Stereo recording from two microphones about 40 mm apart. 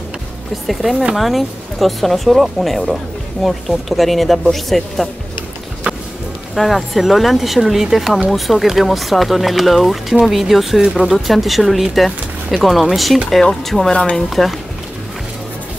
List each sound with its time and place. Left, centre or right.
0.7 s speech: centre
5.9 s music: right
6.5 s speech: centre